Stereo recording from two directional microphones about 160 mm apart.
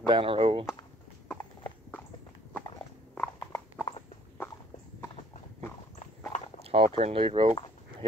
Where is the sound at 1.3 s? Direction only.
10° left (ahead or behind).